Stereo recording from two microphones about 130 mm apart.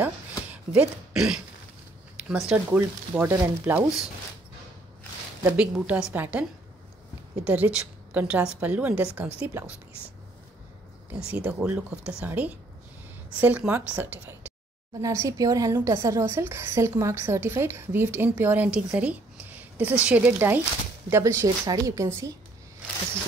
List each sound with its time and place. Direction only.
0.0 s a sound: 10° right (ahead or behind)
2.2 s a woman's voice: 5° right (ahead or behind)
3.3 s a woman's voice: 25° right (ahead or behind)
3.6 s a woman's voice: 15° right (ahead or behind)
5.6 s a woman's voice: 10° right (ahead or behind)
7.4 s a woman's voice: 10° right (ahead or behind)
11.1 s a woman's voice: 10° right (ahead or behind)
15.0 s a woman's voice: 25° right (ahead or behind)